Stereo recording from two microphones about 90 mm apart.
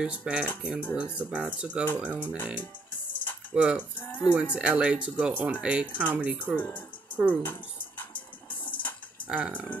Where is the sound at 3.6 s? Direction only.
15° right (ahead or behind).